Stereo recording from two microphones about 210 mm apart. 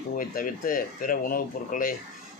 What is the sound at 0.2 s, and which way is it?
Speech, 40° left (ahead or behind).